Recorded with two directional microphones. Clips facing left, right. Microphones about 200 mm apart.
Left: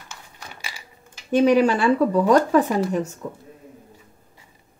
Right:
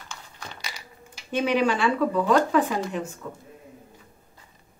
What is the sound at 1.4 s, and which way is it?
Speech, 40° left (ahead or behind).